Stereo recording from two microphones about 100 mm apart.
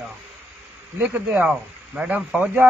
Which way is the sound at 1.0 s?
20° right (ahead or behind).